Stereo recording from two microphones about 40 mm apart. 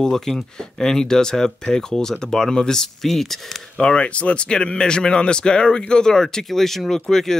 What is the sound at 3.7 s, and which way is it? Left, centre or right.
Speech, left.